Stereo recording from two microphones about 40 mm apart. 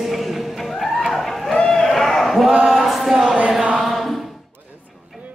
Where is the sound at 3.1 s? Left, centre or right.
Centre.